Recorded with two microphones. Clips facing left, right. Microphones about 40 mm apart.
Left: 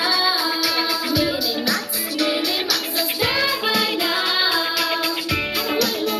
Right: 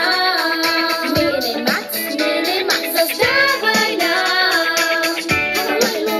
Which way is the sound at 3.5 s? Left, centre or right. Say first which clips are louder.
Right 5 dB; centre.